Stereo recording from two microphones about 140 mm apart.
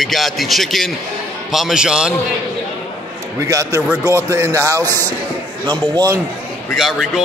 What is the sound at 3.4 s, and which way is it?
Speech, 20° right (ahead or behind).